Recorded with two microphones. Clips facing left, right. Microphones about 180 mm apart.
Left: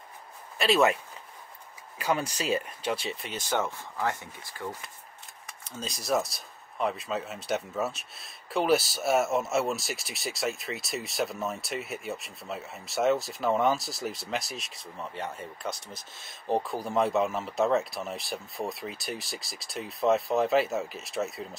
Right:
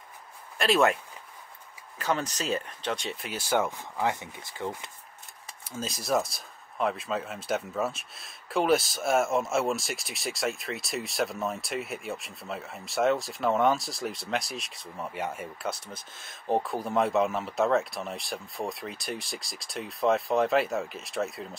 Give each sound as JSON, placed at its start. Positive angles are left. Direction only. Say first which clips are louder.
{"t": 0.6, "sound": "speech", "louder": "even", "side_deg": 0}
{"t": 2.0, "sound": "speech", "louder": "left 1 dB", "side_deg": 10}
{"t": 5.6, "sound": "speech", "louder": "right 3 dB", "side_deg": -5}